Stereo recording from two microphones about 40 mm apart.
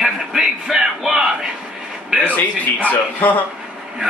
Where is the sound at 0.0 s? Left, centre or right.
Centre.